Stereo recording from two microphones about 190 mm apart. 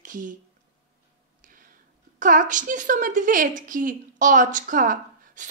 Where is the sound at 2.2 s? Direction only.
45° right (ahead or behind).